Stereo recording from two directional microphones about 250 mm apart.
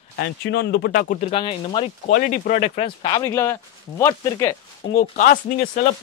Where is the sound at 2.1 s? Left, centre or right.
Left; by 4.5 s centre.